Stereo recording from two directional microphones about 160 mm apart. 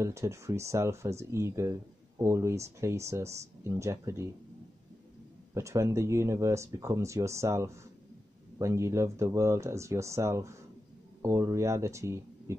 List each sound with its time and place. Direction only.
0.0 s speech: 20° right (ahead or behind)
5.5 s speech: 20° right (ahead or behind)